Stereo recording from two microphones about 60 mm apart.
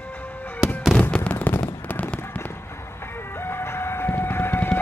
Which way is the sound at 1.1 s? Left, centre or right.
Left.